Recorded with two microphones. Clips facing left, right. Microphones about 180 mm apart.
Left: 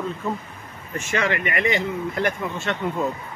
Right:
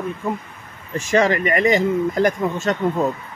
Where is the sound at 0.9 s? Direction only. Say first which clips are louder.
Right 7 dB; 40° right (ahead or behind).